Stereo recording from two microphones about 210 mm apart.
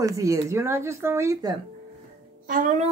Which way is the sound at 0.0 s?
15° right (ahead or behind).